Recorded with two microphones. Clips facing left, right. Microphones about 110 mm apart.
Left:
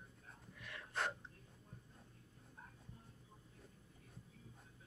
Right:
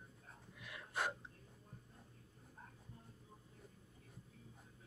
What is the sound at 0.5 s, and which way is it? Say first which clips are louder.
Gasp: right 1 dB; 5° right (ahead or behind).